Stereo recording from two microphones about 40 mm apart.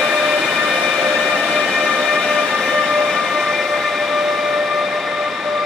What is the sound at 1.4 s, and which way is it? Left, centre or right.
Train, centre.